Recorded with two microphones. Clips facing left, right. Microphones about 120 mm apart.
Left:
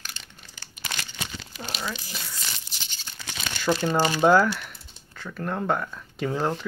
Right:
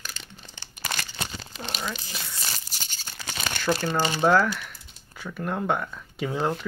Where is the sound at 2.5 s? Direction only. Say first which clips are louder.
Right 2 dB; 45° right (ahead or behind).